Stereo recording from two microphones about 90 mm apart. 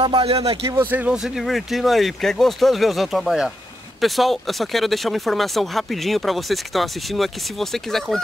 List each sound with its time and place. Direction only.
0.0 s speech: 85° right
0.7 s speech: 20° right (ahead or behind)
1.1 s speech: 5° right (ahead or behind)